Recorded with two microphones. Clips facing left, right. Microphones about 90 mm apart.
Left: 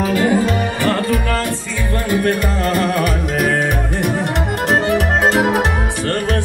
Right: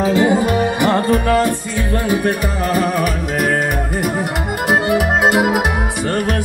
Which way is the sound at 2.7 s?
5° right (ahead or behind).